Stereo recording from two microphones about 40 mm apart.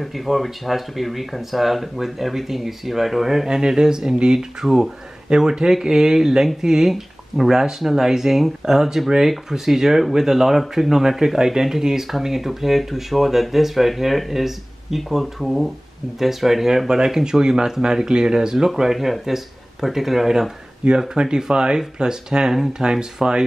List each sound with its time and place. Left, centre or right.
0.0 s speech: centre
3.4 s speech: centre